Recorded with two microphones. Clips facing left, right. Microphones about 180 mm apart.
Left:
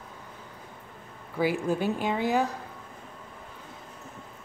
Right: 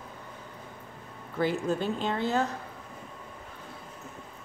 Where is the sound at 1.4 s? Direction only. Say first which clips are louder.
Left 2 dB; 10° left (ahead or behind).